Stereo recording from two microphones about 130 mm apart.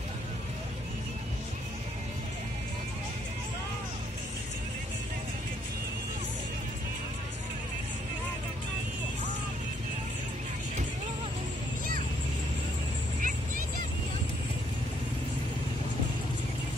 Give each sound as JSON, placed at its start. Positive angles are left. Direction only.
{"t": 13.2, "sound": "music", "side_deg": -90}